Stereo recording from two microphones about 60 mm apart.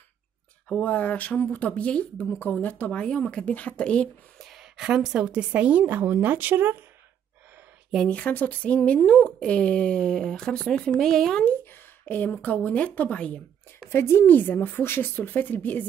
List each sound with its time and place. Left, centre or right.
0.7 s a woman's voice: left
4.4 s a woman's voice: centre; by 6.8 s right
8.1 s speech: left; by 11.4 s centre
11.7 s speech: left
13.8 s speech: left
14.2 s a woman's voice: left